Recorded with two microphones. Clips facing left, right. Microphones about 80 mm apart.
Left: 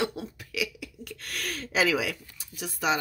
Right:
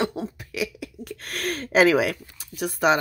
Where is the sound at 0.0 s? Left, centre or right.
Right.